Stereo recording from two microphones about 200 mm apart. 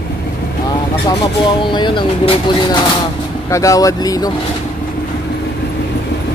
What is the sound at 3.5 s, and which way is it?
Speech, 15° left (ahead or behind).